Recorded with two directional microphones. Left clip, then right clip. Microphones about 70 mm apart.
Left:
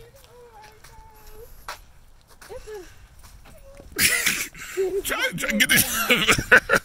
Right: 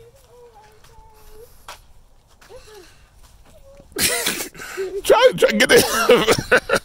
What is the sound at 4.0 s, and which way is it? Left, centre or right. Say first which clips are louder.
Sneeze: even; right.